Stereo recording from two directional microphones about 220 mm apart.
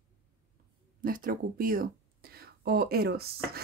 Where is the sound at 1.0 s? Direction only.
40° right (ahead or behind).